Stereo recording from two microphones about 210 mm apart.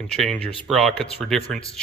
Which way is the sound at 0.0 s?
5° left (ahead or behind).